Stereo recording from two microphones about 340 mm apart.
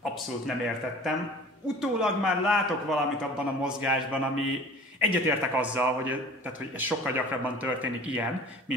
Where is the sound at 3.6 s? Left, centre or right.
Centre.